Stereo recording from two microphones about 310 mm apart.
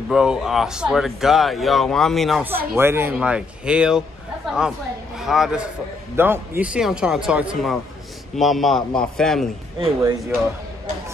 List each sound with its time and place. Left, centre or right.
0.1 s speech: centre
9.8 s speech: centre